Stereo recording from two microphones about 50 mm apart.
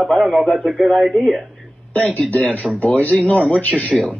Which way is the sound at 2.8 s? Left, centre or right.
Left.